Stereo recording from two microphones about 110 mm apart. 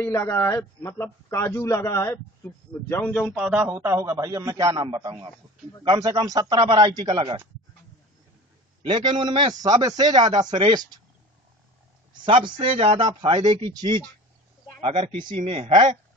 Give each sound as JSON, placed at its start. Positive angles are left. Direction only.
{"t": 0.0, "sound": "a man's voice", "side_deg": 25}
{"t": 2.9, "sound": "a man's voice", "side_deg": 15}
{"t": 3.3, "sound": "a man's voice", "side_deg": -10}
{"t": 4.7, "sound": "speech", "side_deg": -40}
{"t": 8.8, "sound": "speech", "side_deg": -45}
{"t": 9.5, "sound": "speech", "side_deg": -35}
{"t": 12.3, "sound": "speech", "side_deg": -50}
{"t": 12.7, "sound": "speech", "side_deg": -65}